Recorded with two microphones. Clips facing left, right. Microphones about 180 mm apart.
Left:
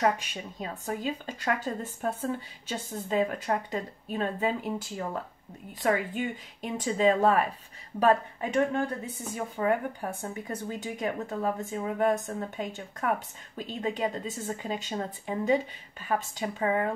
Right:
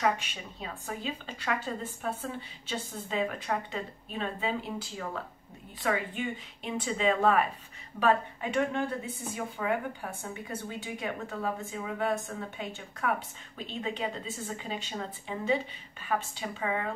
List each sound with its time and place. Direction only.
0.0 s a woman's voice: 40° left (ahead or behind)